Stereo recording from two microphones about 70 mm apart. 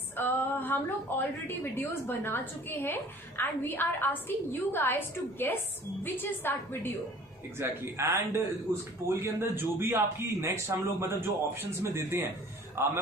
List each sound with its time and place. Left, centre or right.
0.2 s a woman's voice: left
7.5 s a man's voice: right